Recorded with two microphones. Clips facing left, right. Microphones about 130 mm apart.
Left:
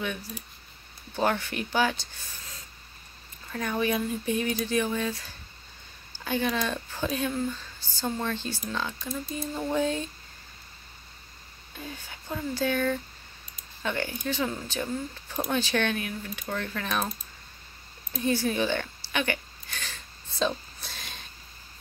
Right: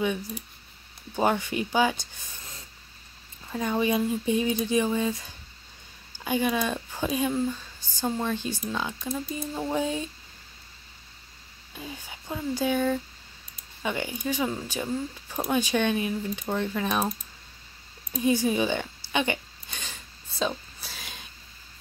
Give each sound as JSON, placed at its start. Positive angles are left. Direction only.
{"t": 0.0, "sound": "speech", "side_deg": -15}
{"t": 3.5, "sound": "speech", "side_deg": -20}
{"t": 11.7, "sound": "speech", "side_deg": -10}
{"t": 18.1, "sound": "speech", "side_deg": -15}
{"t": 19.1, "sound": "a sound", "side_deg": -20}
{"t": 20.3, "sound": "a sound", "side_deg": -5}